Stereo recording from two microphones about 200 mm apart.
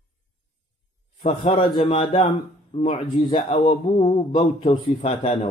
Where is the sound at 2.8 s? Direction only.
35° left (ahead or behind).